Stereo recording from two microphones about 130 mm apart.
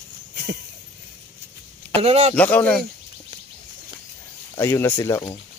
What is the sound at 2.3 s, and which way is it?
Speech, 10° left (ahead or behind).